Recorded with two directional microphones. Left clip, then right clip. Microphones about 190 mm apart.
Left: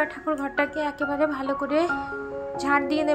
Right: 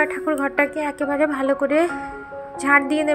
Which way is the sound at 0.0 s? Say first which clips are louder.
Right 6 dB; 15° right (ahead or behind).